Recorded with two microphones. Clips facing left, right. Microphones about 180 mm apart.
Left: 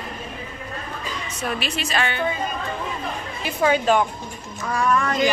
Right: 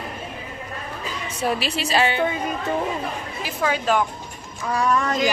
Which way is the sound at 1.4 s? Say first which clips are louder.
Right 4 dB; 30° right (ahead or behind).